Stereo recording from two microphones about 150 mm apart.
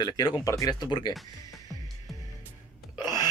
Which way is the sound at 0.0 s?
25° left (ahead or behind).